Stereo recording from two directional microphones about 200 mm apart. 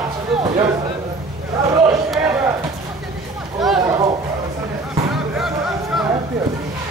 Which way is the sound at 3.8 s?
20° right (ahead or behind).